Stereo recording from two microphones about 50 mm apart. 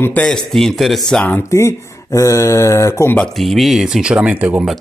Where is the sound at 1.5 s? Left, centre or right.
Left.